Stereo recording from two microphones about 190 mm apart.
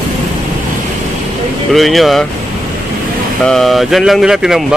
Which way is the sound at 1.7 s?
Centre (ahead or behind).